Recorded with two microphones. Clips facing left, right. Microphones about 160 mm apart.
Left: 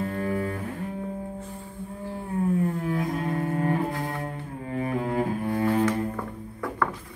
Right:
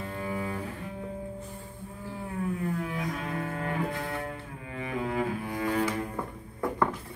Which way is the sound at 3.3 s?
35° left (ahead or behind).